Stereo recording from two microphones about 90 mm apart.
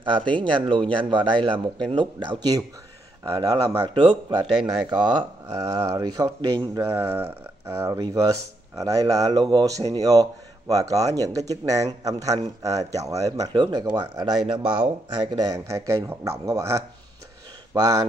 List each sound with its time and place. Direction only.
0.4 s a man's voice: 65° right (ahead or behind)
3.3 s speech: 45° right (ahead or behind)
3.9 s a man's voice: 60° right (ahead or behind)
5.5 s speech: 40° right (ahead or behind)
9.4 s a man's voice: 55° right (ahead or behind)
9.7 s speech: 40° right (ahead or behind)
13.5 s speech: 50° right (ahead or behind)
14.4 s speech: 10° right (ahead or behind)
14.8 s speech: 55° right (ahead or behind)
15.6 s speech: 35° right (ahead or behind)